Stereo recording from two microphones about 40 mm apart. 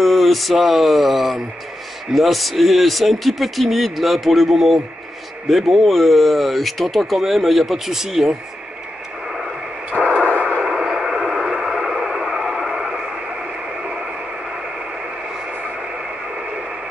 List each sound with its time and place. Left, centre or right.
0.0 s speech: centre
10.0 s radio: centre
10.6 s radio: centre